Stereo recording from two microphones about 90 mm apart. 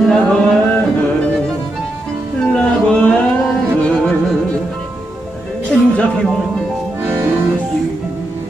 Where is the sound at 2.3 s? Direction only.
10° left (ahead or behind).